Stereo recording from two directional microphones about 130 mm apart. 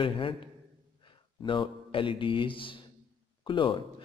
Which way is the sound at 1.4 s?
40° left (ahead or behind).